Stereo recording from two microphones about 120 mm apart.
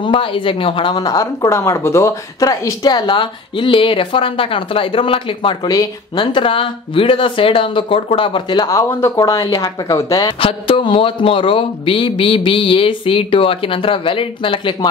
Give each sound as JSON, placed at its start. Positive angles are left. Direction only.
{"t": 0.0, "sound": "speech", "side_deg": 45}
{"t": 0.9, "sound": "speech", "side_deg": 30}
{"t": 5.7, "sound": "speech", "side_deg": 30}
{"t": 6.3, "sound": "speech", "side_deg": 45}
{"t": 8.6, "sound": "speech", "side_deg": 25}
{"t": 10.2, "sound": "speech", "side_deg": 40}